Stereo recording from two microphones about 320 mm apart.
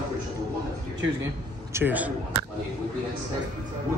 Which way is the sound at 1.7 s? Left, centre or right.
Centre.